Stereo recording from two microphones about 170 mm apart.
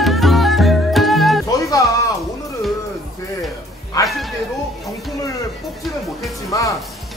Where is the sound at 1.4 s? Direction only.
20° left (ahead or behind).